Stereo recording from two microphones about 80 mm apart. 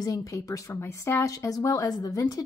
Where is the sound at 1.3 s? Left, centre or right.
Left.